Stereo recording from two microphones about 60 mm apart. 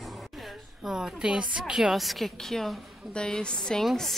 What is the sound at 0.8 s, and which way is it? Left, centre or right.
A woman's voice, centre.